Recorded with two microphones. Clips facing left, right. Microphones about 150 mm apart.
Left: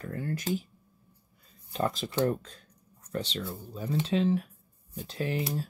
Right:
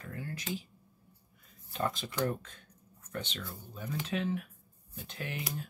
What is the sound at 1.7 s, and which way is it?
Speech, 35° left (ahead or behind).